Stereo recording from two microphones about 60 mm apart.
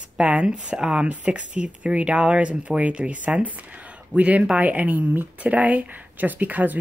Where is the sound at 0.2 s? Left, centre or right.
Centre.